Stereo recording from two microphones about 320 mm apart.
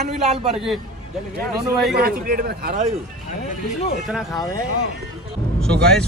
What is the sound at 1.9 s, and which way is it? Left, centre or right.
A man's voice, right.